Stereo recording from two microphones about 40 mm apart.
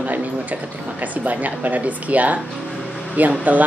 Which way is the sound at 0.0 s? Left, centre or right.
Right.